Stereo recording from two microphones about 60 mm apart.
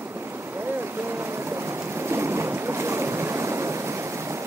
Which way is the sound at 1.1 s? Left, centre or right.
Right.